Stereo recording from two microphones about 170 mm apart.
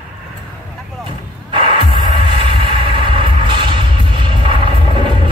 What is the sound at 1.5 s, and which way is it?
Music, 30° right (ahead or behind).